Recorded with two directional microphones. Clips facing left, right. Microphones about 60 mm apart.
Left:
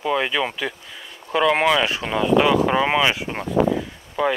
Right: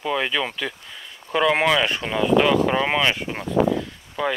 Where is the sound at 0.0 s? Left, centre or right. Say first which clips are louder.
Left 2 dB; centre.